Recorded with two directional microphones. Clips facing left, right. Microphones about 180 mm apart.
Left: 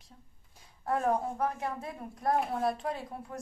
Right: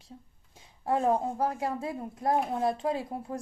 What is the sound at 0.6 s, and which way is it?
A woman's voice, 25° right (ahead or behind).